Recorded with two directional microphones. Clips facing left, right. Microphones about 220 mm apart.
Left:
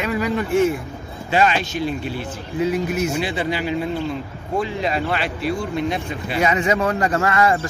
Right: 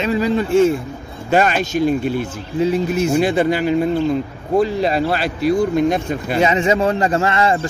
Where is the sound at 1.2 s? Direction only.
45° right (ahead or behind).